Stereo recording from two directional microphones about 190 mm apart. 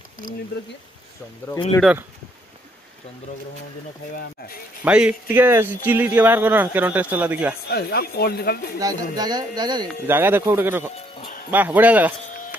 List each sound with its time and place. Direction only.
1.5 s speech: 20° left (ahead or behind)
4.1 s speech: 50° left (ahead or behind)
4.8 s speech: 5° right (ahead or behind)
7.6 s speech: 55° left (ahead or behind)
8.7 s speech: 20° right (ahead or behind)
10.0 s speech: 10° right (ahead or behind)